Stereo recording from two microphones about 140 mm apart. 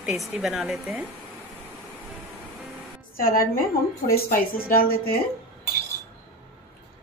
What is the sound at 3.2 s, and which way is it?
A woman's voice, 90° left.